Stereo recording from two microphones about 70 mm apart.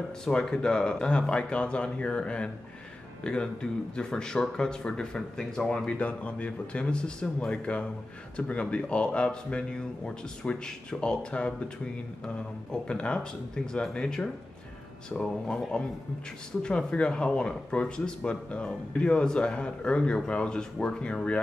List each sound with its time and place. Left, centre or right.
0.2 s speech: centre
12.8 s speech: centre